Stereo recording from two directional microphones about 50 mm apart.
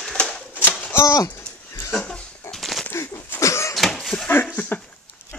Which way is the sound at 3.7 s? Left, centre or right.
Centre.